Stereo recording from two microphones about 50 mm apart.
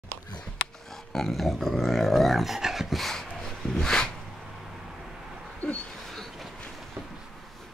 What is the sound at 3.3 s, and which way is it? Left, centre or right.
Snort, centre.